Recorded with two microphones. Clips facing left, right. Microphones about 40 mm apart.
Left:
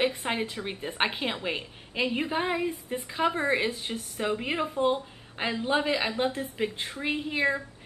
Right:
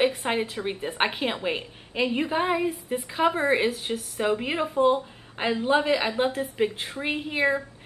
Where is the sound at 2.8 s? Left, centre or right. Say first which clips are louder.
Right 4 dB; right.